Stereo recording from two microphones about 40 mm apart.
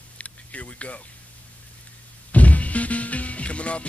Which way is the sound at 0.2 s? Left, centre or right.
Left.